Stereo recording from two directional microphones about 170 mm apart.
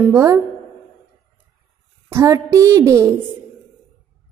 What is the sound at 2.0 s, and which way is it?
A woman's voice, 15° right (ahead or behind).